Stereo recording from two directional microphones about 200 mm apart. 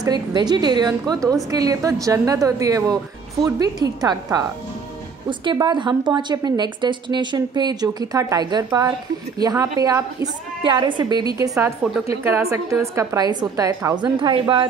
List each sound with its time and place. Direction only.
0.0 s a woman's voice: 20° right (ahead or behind)